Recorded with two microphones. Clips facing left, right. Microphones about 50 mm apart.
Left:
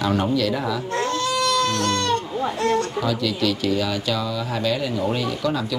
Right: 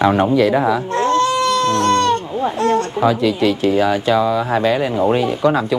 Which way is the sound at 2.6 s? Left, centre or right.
Right.